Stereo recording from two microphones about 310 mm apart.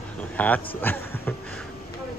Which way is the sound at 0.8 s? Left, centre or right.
Centre.